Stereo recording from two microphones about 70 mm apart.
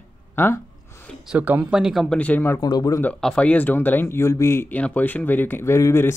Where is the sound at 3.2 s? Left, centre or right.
Centre; by 4.7 s left.